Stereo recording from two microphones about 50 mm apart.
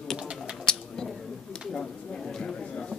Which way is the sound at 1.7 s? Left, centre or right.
Centre.